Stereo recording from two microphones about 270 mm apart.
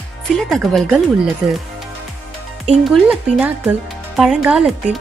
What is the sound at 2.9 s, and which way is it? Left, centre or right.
Speech, centre.